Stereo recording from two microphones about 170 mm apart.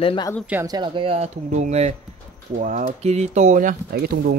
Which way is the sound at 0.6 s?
25° right (ahead or behind).